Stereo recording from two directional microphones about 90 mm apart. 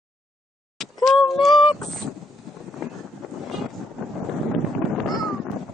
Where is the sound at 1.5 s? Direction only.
70° left (ahead or behind).